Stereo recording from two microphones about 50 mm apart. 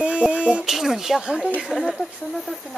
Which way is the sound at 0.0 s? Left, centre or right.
Centre.